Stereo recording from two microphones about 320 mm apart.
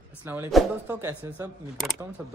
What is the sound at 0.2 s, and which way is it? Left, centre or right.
Speech, centre.